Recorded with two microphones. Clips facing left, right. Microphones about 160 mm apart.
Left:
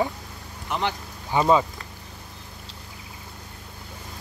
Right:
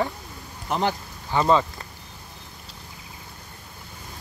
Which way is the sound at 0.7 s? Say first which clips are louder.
Right 3 dB; 40° right (ahead or behind).